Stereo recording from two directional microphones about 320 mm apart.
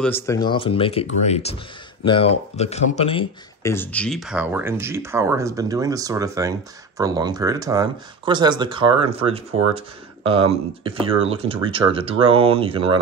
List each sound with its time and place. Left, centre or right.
0.0 s speech: centre